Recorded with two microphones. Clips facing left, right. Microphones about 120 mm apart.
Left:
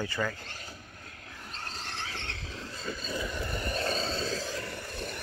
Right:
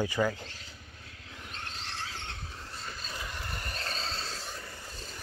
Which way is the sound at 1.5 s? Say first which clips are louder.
Left 2 dB; 40° left (ahead or behind).